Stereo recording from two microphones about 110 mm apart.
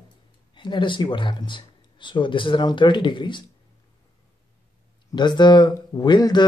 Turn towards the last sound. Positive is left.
turn(degrees=40)  # may be behind; listen again after turning